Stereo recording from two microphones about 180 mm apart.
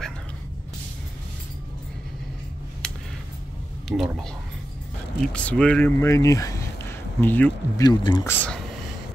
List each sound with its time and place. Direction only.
3.9 s speech: centre (ahead or behind)
7.8 s speech: 25° left (ahead or behind)